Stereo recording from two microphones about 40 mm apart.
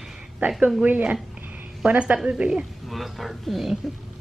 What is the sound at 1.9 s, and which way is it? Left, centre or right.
Speech, right.